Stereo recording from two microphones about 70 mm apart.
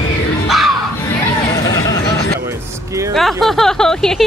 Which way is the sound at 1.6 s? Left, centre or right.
Left.